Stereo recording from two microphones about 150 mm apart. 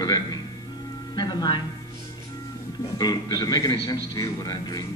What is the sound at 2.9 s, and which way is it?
Speech, 25° left (ahead or behind).